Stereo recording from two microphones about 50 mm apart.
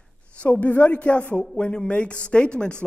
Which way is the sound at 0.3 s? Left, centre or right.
Left.